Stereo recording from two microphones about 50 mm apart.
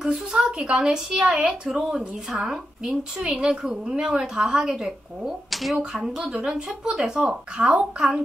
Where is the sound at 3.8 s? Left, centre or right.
Right; by 5.8 s centre.